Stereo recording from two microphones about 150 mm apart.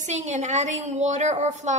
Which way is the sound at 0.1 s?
50° right (ahead or behind).